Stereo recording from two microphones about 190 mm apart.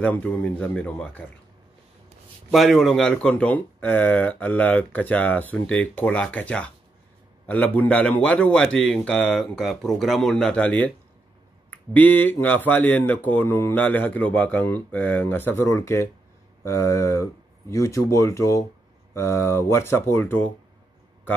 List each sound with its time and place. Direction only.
0.0 s speech: 5° left (ahead or behind)
2.5 s a man's voice: centre (ahead or behind)